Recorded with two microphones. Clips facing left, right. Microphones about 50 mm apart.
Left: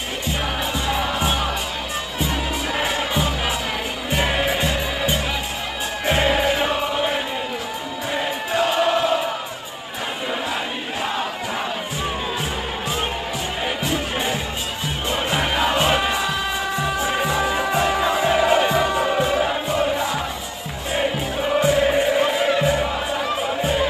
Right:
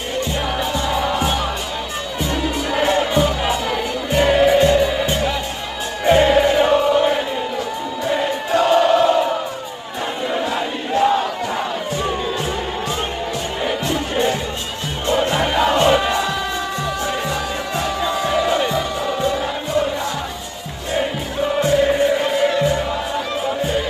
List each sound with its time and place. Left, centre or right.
0.7 s music: centre
8.1 s chant: centre
11.0 s battle cry: centre
13.7 s music: centre
21.5 s music: centre